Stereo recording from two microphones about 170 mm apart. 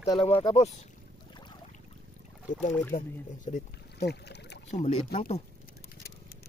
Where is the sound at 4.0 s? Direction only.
75° left (ahead or behind).